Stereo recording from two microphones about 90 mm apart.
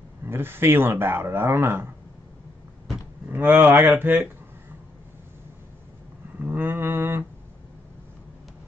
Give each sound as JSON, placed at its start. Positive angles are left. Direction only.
{"t": 0.2, "sound": "speech", "side_deg": -25}
{"t": 3.3, "sound": "speech", "side_deg": -20}
{"t": 6.4, "sound": "a sound", "side_deg": -20}